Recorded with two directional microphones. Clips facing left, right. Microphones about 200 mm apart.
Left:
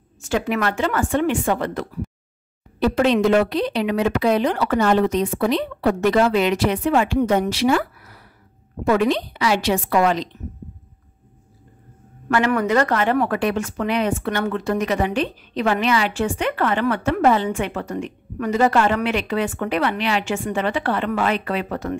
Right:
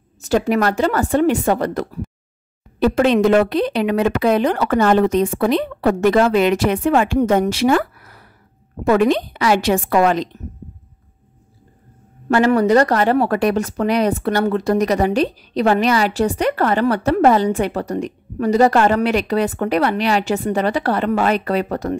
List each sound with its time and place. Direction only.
0.2 s speech: 40° right (ahead or behind)
2.8 s a woman's voice: 50° right (ahead or behind)
12.3 s speech: 30° right (ahead or behind)